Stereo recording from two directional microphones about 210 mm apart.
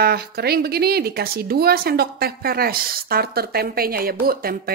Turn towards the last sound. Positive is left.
turn(degrees=-45)  # may be behind; listen again after turning